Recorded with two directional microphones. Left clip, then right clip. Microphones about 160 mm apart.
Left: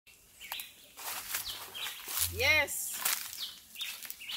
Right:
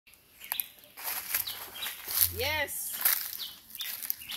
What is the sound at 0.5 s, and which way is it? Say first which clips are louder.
Bird: right 2 dB; 75° right (ahead or behind).